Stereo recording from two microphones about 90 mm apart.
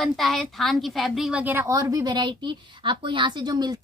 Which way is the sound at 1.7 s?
40° right (ahead or behind).